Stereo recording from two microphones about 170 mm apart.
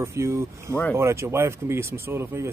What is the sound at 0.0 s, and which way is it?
Speech, 15° right (ahead or behind).